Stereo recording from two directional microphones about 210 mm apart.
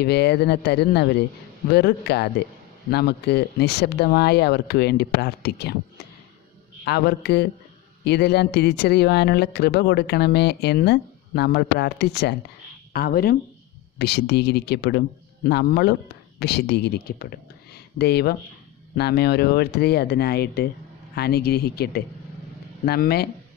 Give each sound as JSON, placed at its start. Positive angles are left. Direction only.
{"t": 0.0, "sound": "speech", "side_deg": 50}